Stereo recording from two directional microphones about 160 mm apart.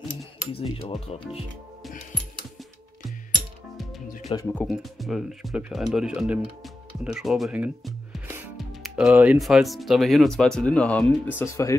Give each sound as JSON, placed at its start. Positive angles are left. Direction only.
{"t": 0.5, "sound": "speech", "side_deg": 35}
{"t": 4.6, "sound": "speech", "side_deg": 0}